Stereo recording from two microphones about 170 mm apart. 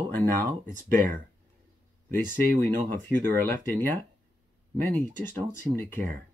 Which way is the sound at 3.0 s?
10° left (ahead or behind).